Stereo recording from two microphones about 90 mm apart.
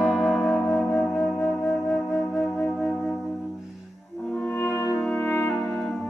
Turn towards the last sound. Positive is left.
turn(degrees=30)  # may be behind; listen again after turning